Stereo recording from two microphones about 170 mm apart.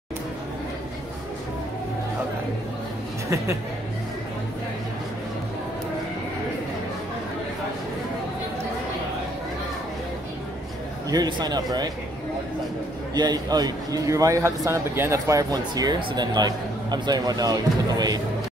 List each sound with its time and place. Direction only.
11.1 s a man's voice: 25° right (ahead or behind)
13.1 s a man's voice: 25° right (ahead or behind)